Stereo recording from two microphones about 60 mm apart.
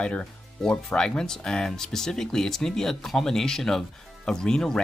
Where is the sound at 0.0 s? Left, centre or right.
Centre.